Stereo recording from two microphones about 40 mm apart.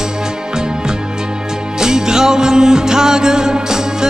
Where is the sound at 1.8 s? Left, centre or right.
Centre.